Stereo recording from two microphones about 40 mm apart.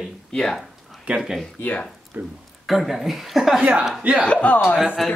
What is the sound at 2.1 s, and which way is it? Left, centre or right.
Speech, right.